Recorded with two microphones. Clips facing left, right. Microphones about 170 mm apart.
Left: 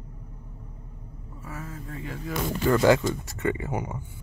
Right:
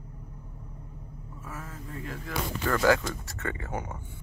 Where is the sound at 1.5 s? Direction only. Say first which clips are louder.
Left 3 dB; centre (ahead or behind).